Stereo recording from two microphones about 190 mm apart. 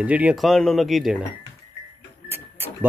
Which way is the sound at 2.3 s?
10° right (ahead or behind).